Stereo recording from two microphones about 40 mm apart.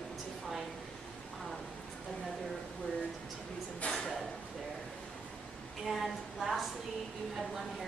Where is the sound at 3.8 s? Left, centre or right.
Left.